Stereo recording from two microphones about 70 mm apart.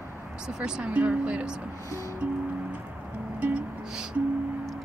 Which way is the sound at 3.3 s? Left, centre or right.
Centre.